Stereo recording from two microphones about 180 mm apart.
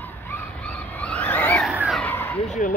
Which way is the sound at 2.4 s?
40° left (ahead or behind).